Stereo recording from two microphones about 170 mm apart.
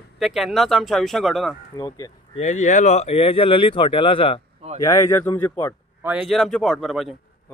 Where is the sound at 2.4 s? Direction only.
45° left (ahead or behind).